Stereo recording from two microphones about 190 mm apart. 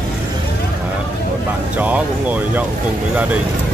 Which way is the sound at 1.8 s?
10° right (ahead or behind).